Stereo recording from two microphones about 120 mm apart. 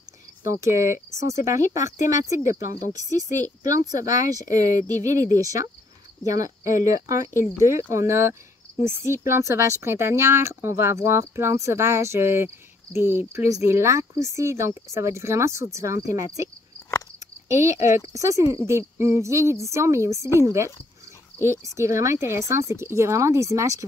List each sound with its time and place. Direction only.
0.6 s speech: 25° right (ahead or behind)
18.1 s speech: 25° right (ahead or behind)